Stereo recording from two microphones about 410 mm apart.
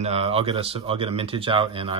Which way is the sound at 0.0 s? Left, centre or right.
Centre.